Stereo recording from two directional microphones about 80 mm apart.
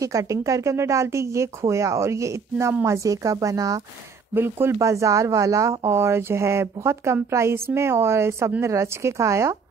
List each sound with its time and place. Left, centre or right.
0.0 s speech: right
4.4 s speech: right
4.7 s speech: right